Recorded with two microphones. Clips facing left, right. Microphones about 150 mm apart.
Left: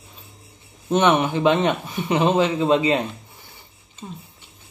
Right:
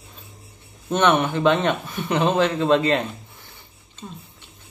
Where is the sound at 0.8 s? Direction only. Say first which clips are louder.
Left 1 dB; 15° left (ahead or behind).